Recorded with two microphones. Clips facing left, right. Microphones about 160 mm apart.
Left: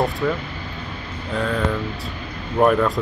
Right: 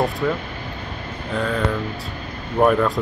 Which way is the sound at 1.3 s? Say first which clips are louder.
Even; centre (ahead or behind).